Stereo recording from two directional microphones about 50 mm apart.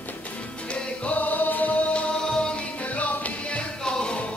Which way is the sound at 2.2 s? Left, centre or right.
Centre.